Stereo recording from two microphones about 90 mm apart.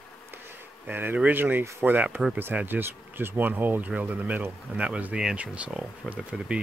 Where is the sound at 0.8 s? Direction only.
20° right (ahead or behind).